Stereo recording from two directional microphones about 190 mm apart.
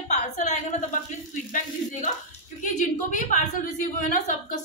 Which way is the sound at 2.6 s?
40° left (ahead or behind).